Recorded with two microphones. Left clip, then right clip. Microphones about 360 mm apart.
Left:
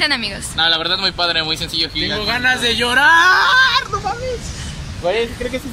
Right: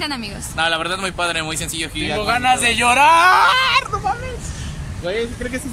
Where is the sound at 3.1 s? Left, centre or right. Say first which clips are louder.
Left 1 dB; centre.